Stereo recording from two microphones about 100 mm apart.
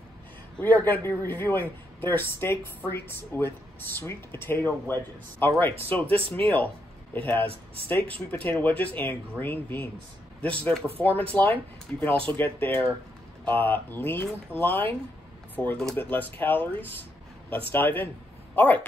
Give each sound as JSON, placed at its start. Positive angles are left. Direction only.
{"t": 0.6, "sound": "a man's voice", "side_deg": 15}
{"t": 11.0, "sound": "a man's voice", "side_deg": 20}